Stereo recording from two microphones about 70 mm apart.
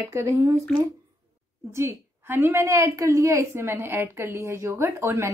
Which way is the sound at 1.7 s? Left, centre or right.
Right.